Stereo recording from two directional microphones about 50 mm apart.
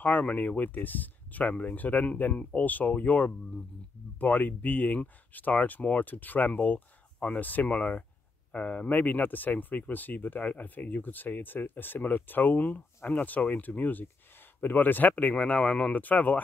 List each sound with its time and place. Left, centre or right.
0.0 s speech: left